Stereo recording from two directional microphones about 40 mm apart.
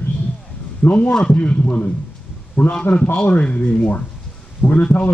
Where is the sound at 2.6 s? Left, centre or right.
Left.